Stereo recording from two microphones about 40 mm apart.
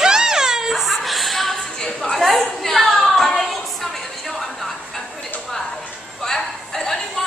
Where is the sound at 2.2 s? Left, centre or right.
Centre.